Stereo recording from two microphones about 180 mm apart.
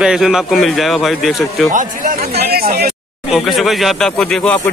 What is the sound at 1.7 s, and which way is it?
A man's voice, 50° right (ahead or behind).